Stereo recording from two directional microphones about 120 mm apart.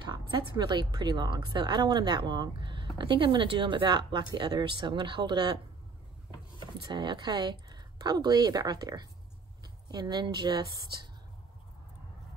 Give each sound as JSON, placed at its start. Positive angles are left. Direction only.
{"t": 0.0, "sound": "speech", "side_deg": -40}
{"t": 6.6, "sound": "speech", "side_deg": -40}